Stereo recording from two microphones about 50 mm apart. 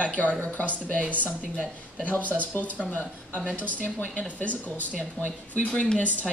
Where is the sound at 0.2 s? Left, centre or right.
Left.